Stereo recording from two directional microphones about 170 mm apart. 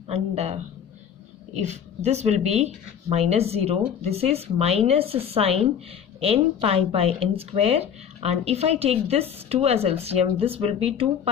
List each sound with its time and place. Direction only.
0.1 s speech: 35° right (ahead or behind)
1.6 s speech: 40° right (ahead or behind)